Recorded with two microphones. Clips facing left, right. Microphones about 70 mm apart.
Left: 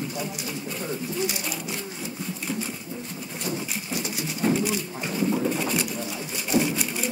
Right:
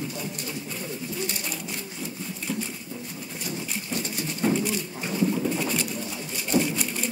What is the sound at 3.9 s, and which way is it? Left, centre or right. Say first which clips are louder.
Pigeon: even; centre.